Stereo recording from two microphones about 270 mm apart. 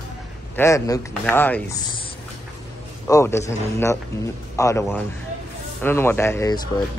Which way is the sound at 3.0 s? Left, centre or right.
Centre.